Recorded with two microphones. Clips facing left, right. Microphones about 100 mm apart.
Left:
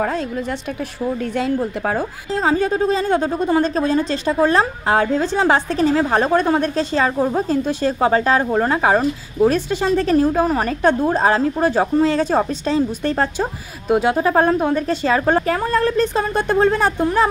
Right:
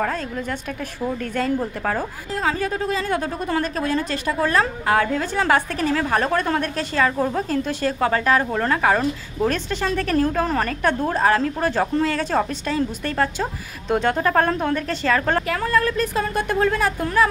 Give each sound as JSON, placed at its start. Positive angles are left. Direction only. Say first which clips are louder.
{"t": 0.0, "sound": "a woman's voice", "louder": "left 3 dB", "side_deg": 10}
{"t": 13.8, "sound": "speech", "louder": "left 4 dB", "side_deg": 10}
{"t": 15.4, "sound": "a woman's voice", "louder": "left 3 dB", "side_deg": 30}